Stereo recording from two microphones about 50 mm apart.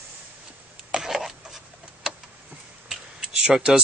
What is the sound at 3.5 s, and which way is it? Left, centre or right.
Speech, centre.